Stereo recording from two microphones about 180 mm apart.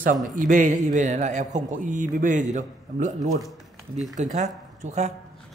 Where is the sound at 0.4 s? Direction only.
45° right (ahead or behind).